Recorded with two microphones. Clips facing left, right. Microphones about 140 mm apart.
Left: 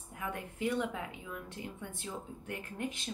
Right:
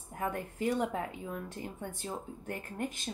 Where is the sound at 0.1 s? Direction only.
45° right (ahead or behind).